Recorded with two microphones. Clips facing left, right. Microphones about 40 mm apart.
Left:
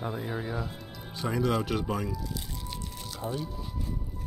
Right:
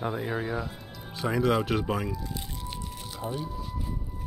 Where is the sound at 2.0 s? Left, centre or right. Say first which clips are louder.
Right 1 dB; right.